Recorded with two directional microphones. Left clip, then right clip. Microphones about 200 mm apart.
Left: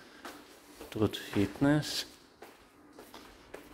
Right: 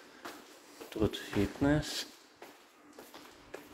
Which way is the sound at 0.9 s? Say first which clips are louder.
Left 1 dB; 20° left (ahead or behind).